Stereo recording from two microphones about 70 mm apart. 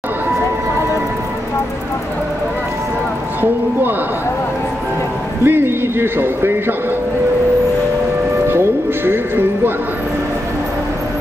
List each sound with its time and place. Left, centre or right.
5.4 s speech: right
8.5 s music: right